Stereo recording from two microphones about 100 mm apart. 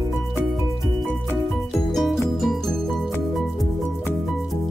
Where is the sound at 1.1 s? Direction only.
Centre (ahead or behind).